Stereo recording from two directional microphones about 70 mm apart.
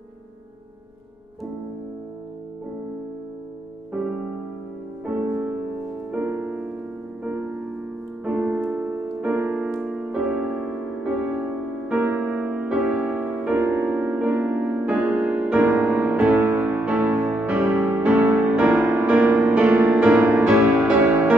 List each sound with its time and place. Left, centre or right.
3.9 s music: centre
11.1 s music: right
19.1 s music: centre